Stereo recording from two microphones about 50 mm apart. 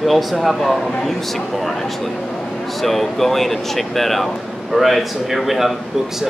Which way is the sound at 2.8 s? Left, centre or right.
Centre.